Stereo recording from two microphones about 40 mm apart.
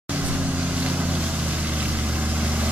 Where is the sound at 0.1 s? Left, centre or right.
Right.